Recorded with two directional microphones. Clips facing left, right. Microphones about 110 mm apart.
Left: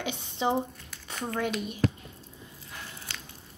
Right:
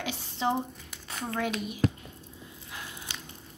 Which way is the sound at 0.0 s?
Centre (ahead or behind).